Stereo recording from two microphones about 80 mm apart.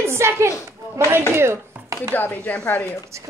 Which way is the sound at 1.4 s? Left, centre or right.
Right.